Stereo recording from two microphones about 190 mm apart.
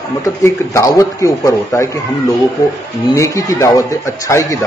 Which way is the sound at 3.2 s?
15° left (ahead or behind).